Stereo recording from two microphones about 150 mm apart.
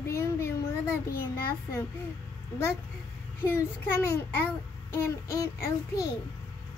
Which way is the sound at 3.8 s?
15° left (ahead or behind).